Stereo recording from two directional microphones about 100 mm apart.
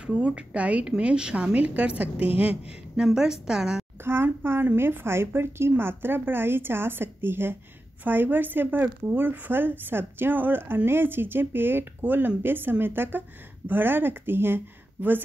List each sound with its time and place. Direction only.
0.0 s a woman's voice: 10° right (ahead or behind)
4.0 s speech: 25° right (ahead or behind)